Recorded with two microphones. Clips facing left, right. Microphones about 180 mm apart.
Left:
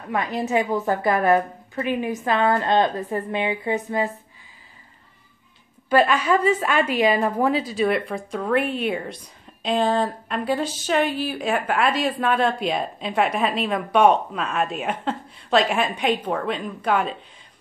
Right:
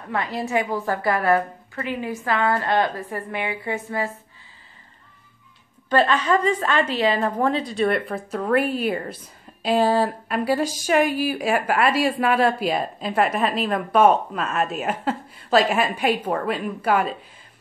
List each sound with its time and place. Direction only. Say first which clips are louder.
0.1 s a woman's voice: left 1 dB; 20° left (ahead or behind)
5.9 s a woman's voice: left 1 dB; 10° left (ahead or behind)